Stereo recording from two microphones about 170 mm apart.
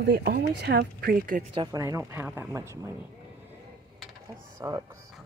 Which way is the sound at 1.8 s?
15° right (ahead or behind).